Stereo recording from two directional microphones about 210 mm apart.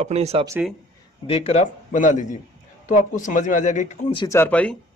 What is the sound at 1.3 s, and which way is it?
Speech, 30° left (ahead or behind).